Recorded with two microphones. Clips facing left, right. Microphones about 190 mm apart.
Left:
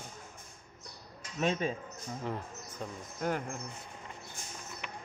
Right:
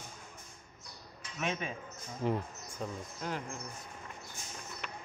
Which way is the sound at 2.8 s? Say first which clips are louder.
Right 2 dB; centre (ahead or behind).